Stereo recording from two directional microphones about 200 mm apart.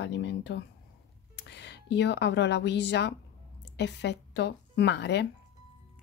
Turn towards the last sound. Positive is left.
turn(degrees=60)  # may be behind; listen again after turning